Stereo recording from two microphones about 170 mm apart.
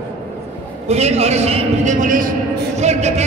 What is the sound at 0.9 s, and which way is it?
A man's voice, 40° right (ahead or behind).